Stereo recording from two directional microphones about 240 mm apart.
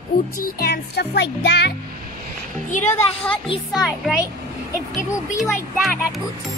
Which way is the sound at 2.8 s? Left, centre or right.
Centre.